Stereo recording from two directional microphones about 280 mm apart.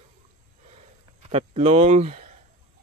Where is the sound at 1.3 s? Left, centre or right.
Right.